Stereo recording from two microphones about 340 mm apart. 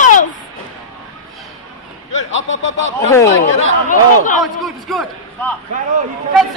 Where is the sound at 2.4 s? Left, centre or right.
Left.